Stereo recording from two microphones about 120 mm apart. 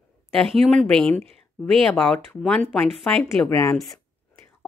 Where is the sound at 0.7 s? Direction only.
5° left (ahead or behind).